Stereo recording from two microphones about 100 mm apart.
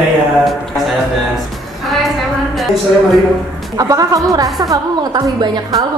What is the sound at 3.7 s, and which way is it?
A woman's voice, 35° right (ahead or behind).